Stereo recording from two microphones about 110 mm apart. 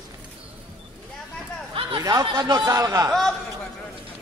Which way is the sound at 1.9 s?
35° right (ahead or behind).